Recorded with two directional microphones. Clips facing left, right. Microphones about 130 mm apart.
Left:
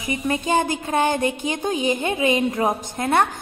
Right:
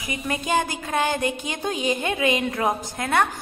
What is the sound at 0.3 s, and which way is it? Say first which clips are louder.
A woman's voice: left 3 dB; 20° left (ahead or behind).